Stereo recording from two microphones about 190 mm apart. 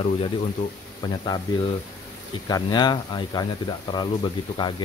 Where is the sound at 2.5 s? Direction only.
20° left (ahead or behind).